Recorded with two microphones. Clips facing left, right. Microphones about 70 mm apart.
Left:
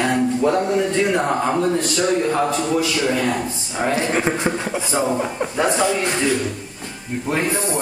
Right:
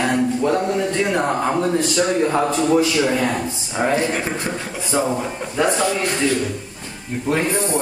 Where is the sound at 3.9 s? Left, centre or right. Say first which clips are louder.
Left 3 dB; centre.